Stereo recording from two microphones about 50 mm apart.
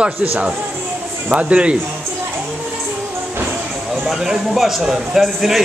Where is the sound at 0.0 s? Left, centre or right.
Right.